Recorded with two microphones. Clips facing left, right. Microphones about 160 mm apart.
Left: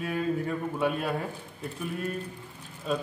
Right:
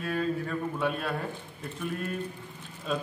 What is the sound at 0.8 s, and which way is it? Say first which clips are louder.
Speech: left 3 dB; 10° left (ahead or behind).